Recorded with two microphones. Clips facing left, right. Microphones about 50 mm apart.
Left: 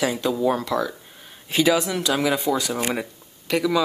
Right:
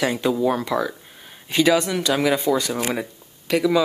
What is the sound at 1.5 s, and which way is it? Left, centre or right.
Speech, centre.